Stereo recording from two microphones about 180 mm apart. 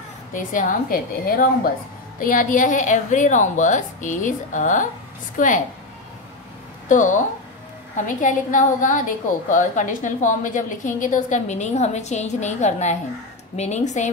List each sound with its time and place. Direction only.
0.3 s a woman's voice: 45° left (ahead or behind)
6.9 s a woman's voice: 45° left (ahead or behind)